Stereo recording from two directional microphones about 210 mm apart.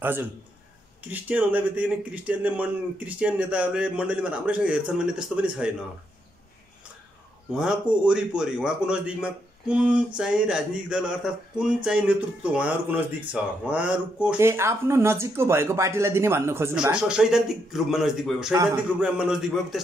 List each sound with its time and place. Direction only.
0.0 s a man's voice: 10° right (ahead or behind)
7.5 s a man's voice: 5° right (ahead or behind)